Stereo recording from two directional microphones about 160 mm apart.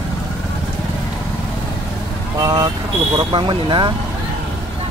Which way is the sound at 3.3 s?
30° right (ahead or behind).